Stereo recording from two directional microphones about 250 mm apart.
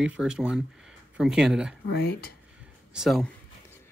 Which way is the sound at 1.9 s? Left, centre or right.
Left.